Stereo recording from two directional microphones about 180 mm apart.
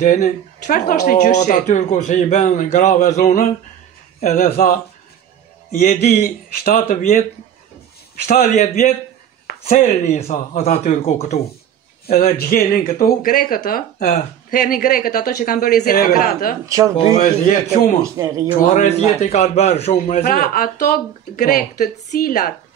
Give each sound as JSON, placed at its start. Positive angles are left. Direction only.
{"t": 0.0, "sound": "speech", "side_deg": 45}
{"t": 4.2, "sound": "a man's voice", "side_deg": 55}
{"t": 6.0, "sound": "speech", "side_deg": 55}
{"t": 8.3, "sound": "a man's voice", "side_deg": 45}
{"t": 12.2, "sound": "speech", "side_deg": 55}
{"t": 16.6, "sound": "speech", "side_deg": -20}
{"t": 16.9, "sound": "a man's voice", "side_deg": 35}
{"t": 17.2, "sound": "speech", "side_deg": 45}
{"t": 18.0, "sound": "speech", "side_deg": -20}
{"t": 18.6, "sound": "a man's voice", "side_deg": 40}